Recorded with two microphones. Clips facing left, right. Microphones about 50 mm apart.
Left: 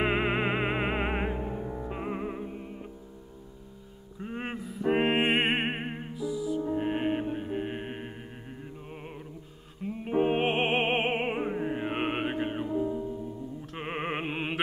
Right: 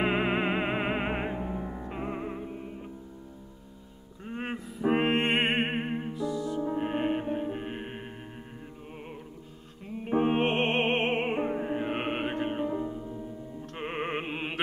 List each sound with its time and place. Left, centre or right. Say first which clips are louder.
0.0 s music: even; centre
4.2 s music: even; centre
12.6 s music: left 2 dB; centre
13.7 s music: even; centre